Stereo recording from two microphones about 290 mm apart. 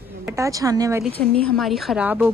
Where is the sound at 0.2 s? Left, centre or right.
Centre.